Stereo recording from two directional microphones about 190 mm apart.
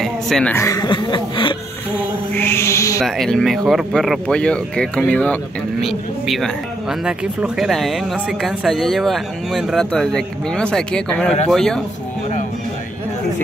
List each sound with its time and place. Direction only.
0.0 s a woman's voice: 5° left (ahead or behind); by 1.6 s 25° left (ahead or behind)
2.3 s music: 10° left (ahead or behind)
3.0 s speech: centre (ahead or behind)